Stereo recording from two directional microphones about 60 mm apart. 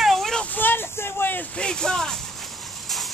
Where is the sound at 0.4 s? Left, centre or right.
Left.